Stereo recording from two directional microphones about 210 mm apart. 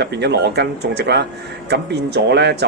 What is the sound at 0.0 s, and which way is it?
Speech, 55° right (ahead or behind).